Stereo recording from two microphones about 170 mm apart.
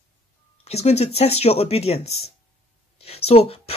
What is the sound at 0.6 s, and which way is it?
Speech, 40° left (ahead or behind).